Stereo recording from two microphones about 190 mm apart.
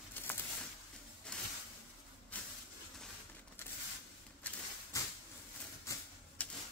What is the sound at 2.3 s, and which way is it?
Vehicle, 10° left (ahead or behind).